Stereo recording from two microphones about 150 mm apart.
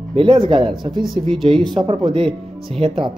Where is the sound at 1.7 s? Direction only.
35° right (ahead or behind).